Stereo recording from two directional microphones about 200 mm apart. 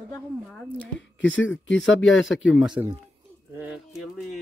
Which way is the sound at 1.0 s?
65° left (ahead or behind).